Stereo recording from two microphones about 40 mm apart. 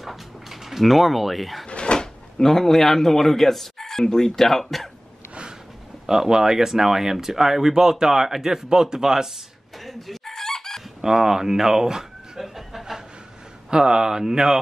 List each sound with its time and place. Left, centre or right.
0.0 s dog: centre
1.7 s speech: left; by 4.8 s centre
6.0 s speech: centre
9.8 s chicken: centre
11.0 s a sound: centre
13.7 s speech: centre